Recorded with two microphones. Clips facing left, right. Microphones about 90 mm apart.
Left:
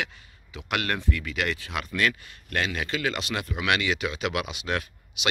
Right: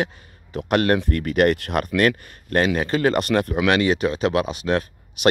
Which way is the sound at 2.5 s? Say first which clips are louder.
Right 9 dB; 40° right (ahead or behind).